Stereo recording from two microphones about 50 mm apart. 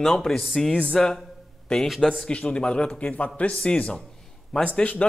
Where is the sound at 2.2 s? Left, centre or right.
Centre.